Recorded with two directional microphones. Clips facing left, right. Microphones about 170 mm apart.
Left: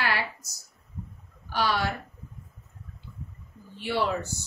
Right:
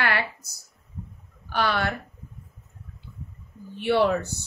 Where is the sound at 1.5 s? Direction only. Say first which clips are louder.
Right 2 dB; 60° right (ahead or behind).